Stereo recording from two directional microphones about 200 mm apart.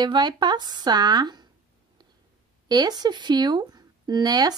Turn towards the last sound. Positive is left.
turn(degrees=-20)  # may be behind; listen again after turning